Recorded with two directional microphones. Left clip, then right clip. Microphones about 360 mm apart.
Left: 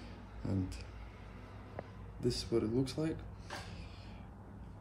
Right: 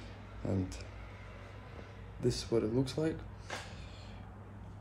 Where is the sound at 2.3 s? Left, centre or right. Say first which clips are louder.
Right 2 dB; centre.